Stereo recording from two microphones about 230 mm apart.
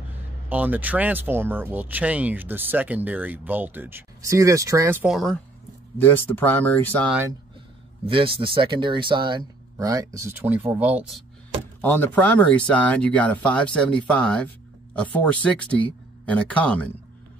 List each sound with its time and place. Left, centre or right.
0.5 s speech: centre
8.0 s speech: right; by 11.2 s centre
11.8 s speech: centre